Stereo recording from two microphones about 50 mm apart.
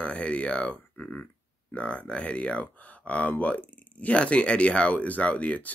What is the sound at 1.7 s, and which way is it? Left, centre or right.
Speech, left.